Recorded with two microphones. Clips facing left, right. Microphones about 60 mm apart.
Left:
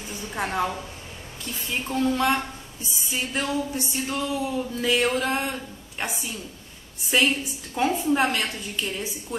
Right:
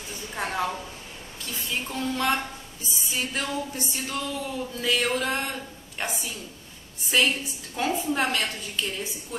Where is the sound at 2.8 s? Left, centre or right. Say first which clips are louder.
Left 1 dB; centre.